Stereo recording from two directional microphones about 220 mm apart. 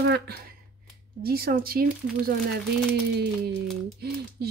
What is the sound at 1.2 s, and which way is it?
Speech, 45° right (ahead or behind).